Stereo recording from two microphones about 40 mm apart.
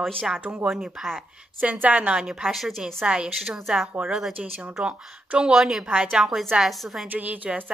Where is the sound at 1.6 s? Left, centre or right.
Right.